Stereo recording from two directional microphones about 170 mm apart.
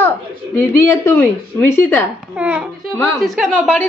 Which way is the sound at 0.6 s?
15° left (ahead or behind).